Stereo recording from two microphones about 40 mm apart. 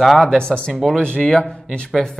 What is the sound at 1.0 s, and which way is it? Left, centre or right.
Speech, left.